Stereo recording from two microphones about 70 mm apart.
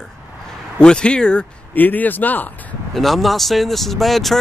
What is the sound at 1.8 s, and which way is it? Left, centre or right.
Speech, left.